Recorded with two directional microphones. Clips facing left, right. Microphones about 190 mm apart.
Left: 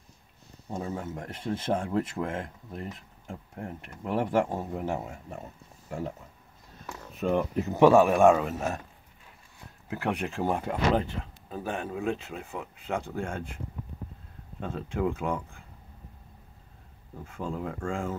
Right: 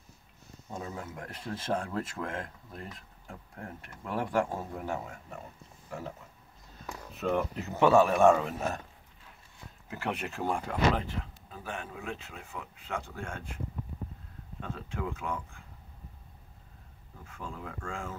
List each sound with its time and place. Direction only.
0.7 s speech: 30° left (ahead or behind)
7.2 s speech: 15° left (ahead or behind)
9.8 s speech: 15° left (ahead or behind)
14.6 s speech: 30° left (ahead or behind)
17.4 s speech: 30° left (ahead or behind)